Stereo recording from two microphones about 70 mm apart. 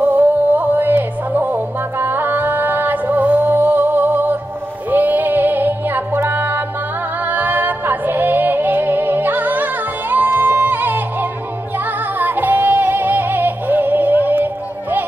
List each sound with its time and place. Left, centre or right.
0.0 s music: right
12.2 s yodeling: right